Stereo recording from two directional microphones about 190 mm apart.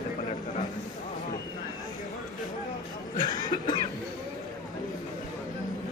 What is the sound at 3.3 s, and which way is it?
Cough, 20° left (ahead or behind).